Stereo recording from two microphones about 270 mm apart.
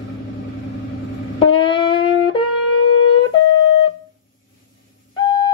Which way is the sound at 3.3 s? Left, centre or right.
Left.